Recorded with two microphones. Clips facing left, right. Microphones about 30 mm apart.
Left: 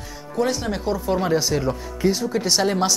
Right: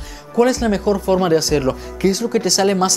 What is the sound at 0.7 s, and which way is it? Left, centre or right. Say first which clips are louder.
Speech: right 6 dB; right.